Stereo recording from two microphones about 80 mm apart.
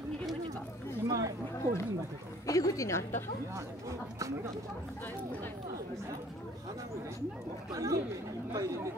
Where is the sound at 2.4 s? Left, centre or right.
Left.